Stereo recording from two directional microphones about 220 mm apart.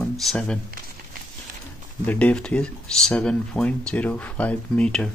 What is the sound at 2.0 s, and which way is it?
Speech, 5° left (ahead or behind).